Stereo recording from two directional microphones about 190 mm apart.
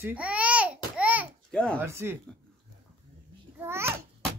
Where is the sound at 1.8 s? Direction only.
15° right (ahead or behind).